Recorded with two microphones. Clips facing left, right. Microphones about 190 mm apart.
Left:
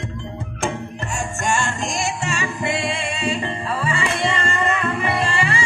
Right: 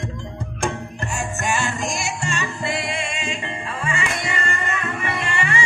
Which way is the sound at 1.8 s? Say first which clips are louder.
Left 2 dB; centre (ahead or behind).